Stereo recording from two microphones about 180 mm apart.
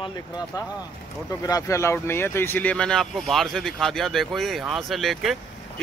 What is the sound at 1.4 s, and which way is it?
Speech, 20° left (ahead or behind).